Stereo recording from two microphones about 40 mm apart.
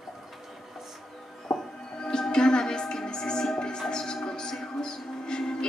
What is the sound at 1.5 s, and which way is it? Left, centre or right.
Music, centre.